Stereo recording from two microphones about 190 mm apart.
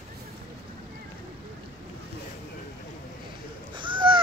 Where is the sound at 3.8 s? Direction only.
25° right (ahead or behind).